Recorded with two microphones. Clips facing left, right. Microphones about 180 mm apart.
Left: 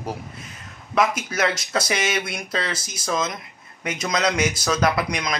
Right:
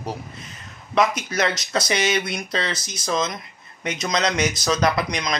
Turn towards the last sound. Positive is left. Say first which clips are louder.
# even
turn(degrees=5)  # may be behind; listen again after turning